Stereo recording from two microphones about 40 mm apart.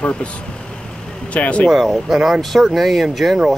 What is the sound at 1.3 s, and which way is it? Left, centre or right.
Speech, left.